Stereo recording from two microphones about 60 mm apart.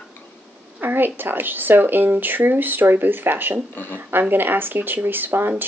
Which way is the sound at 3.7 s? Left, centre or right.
Left.